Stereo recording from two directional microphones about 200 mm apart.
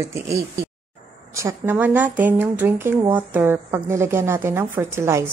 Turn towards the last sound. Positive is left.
turn(degrees=-15)  # may be behind; listen again after turning